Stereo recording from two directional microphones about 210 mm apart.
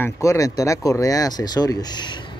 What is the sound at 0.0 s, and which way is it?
Speech, 15° left (ahead or behind).